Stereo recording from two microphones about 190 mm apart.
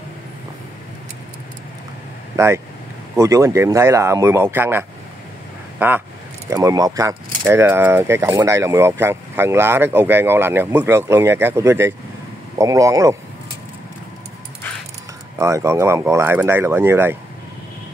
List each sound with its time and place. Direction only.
2.3 s speech: 15° right (ahead or behind)
15.3 s speech: 15° right (ahead or behind)